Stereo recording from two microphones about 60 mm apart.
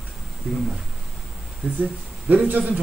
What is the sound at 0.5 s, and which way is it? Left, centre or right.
Speech, centre.